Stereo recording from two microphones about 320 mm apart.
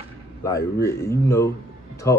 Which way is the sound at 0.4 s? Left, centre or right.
Centre.